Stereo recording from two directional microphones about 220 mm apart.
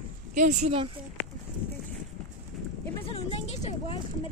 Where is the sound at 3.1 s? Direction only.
30° left (ahead or behind).